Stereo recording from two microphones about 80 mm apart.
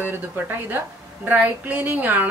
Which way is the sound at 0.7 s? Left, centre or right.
Right.